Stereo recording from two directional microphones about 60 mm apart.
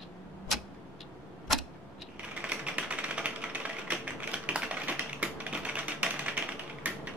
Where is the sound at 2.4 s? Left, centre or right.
Right.